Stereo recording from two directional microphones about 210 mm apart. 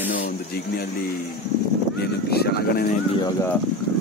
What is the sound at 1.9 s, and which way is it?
Speech, 50° left (ahead or behind).